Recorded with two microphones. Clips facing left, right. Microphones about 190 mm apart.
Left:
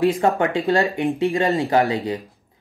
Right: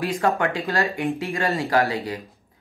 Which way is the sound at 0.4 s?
25° left (ahead or behind).